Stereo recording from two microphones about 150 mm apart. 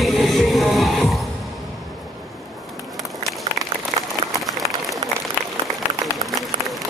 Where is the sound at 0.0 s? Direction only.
Centre (ahead or behind).